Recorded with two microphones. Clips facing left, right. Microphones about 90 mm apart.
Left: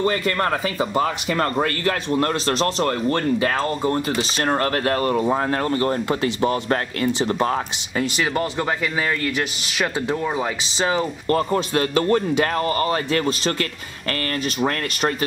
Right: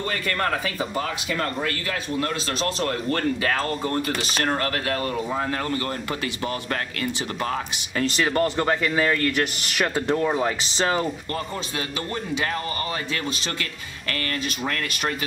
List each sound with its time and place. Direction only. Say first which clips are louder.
0.0 s speech: left 5 dB; 30° left (ahead or behind)
1.3 s speech: left 3 dB; 40° left (ahead or behind)
8.0 s speech: right 1 dB; 5° left (ahead or behind)
11.2 s speech: left 10 dB; 50° left (ahead or behind)